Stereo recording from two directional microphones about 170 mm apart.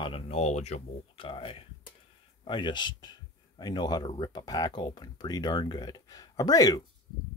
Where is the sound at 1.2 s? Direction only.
30° left (ahead or behind).